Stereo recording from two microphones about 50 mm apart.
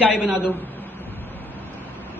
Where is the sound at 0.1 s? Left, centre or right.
Centre.